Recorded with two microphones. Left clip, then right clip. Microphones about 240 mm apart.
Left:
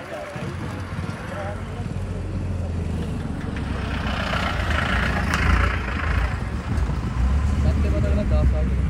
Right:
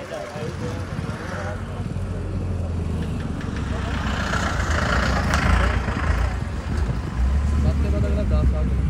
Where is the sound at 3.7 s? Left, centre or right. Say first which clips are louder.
Even; left.